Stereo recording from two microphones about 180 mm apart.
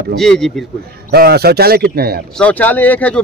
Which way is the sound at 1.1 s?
60° right (ahead or behind).